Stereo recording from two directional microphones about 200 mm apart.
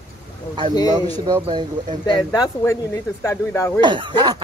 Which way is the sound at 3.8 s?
25° right (ahead or behind).